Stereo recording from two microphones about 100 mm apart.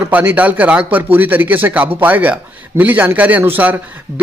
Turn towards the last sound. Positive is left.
turn(degrees=-20)  # may be behind; listen again after turning